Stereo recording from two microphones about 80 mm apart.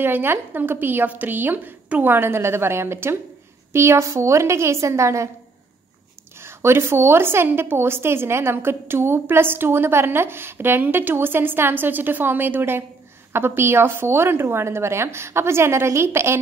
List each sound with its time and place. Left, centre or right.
0.0 s a woman's voice: right
6.4 s a woman's voice: right